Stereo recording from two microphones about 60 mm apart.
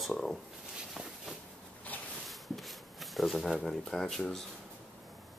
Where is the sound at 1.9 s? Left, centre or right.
Left.